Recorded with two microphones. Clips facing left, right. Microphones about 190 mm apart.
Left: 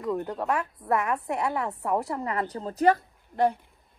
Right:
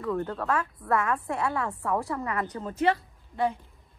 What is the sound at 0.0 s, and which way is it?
A woman's voice, 20° left (ahead or behind).